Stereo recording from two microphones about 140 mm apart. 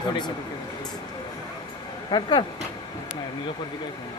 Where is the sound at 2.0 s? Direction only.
35° left (ahead or behind).